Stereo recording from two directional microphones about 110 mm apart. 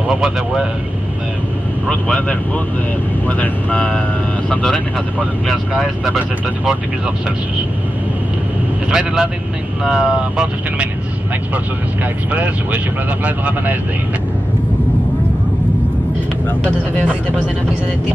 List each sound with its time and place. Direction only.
0.1 s speech: 5° right (ahead or behind)
1.9 s speech: 10° left (ahead or behind)
5.5 s speech: centre (ahead or behind)
8.9 s speech: 5° right (ahead or behind)
12.3 s speech: 10° right (ahead or behind)
17.0 s speech: 10° right (ahead or behind)